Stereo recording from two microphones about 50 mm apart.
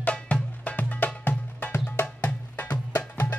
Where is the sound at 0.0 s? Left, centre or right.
Left.